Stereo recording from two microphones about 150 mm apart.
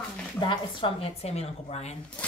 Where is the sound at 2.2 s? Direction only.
10° left (ahead or behind).